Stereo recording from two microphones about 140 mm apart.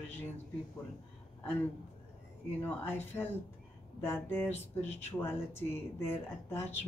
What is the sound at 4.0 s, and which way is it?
Speech, 15° left (ahead or behind).